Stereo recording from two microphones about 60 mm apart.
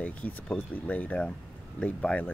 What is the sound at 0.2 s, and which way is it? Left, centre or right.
Speech, left.